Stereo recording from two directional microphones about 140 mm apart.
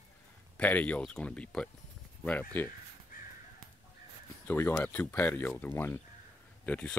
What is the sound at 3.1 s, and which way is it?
Crow, 80° left.